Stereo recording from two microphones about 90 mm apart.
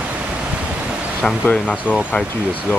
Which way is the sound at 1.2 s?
5° left (ahead or behind).